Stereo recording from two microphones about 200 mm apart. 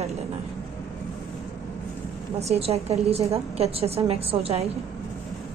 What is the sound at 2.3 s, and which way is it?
A woman's voice, 30° right (ahead or behind).